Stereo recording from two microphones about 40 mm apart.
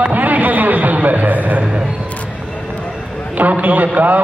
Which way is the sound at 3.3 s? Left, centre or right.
Right.